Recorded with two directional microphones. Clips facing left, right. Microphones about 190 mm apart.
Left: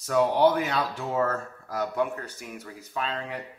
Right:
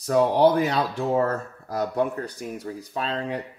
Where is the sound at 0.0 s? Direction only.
35° right (ahead or behind).